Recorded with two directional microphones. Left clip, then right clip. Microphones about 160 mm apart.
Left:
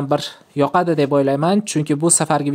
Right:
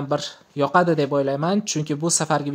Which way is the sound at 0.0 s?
30° left (ahead or behind).